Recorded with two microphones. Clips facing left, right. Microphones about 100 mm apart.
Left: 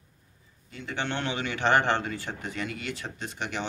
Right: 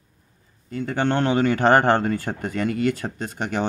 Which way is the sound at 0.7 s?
40° right (ahead or behind).